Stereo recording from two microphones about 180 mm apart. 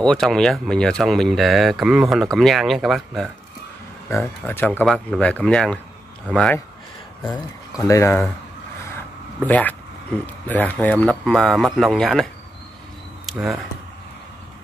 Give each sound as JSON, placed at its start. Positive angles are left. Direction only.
{"t": 0.0, "sound": "speech", "side_deg": 5}
{"t": 4.1, "sound": "speech", "side_deg": 10}
{"t": 7.7, "sound": "speech", "side_deg": 20}
{"t": 9.5, "sound": "speech", "side_deg": 10}
{"t": 13.3, "sound": "speech", "side_deg": 0}